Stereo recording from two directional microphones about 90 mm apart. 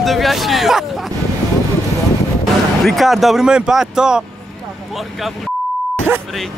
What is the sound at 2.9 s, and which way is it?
Speech, centre (ahead or behind).